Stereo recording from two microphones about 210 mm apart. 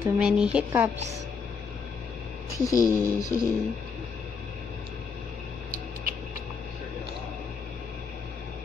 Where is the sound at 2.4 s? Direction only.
15° left (ahead or behind).